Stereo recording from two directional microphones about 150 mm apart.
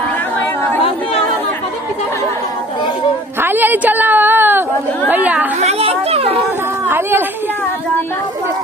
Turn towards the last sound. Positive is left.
turn(degrees=-15)  # may be behind; listen again after turning